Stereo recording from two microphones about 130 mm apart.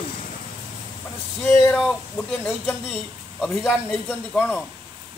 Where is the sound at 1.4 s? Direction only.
20° left (ahead or behind).